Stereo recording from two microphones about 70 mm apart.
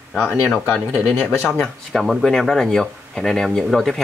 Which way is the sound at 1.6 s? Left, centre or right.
Centre.